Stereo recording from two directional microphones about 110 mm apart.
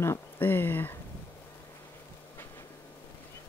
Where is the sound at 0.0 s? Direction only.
20° left (ahead or behind).